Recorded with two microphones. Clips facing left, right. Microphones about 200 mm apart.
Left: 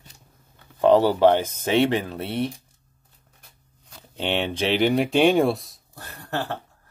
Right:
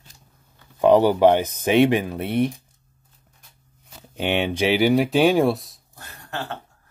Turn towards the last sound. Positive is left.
turn(degrees=60)  # may be behind; listen again after turning